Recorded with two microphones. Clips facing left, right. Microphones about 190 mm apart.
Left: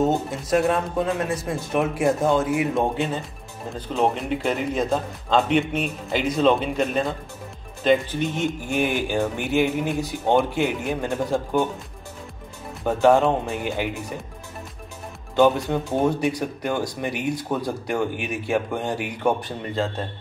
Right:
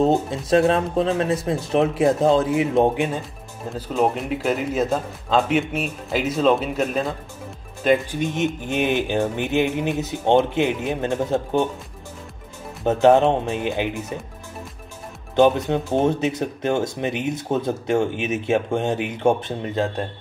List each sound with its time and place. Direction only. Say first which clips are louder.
0.0 s speech: right 3 dB; 25° right (ahead or behind)
3.7 s a man's voice: right 1 dB; 5° right (ahead or behind); by 11.6 s 20° right (ahead or behind)
12.8 s speech: right 2 dB; 20° right (ahead or behind)
15.3 s speech: right 2 dB; 20° right (ahead or behind)